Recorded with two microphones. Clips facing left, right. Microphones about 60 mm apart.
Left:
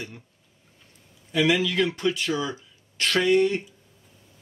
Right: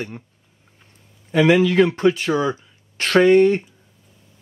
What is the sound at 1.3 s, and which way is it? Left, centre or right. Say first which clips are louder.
Speech: right 7 dB; right.